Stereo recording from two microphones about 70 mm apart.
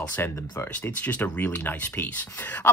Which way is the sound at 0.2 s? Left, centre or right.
Left.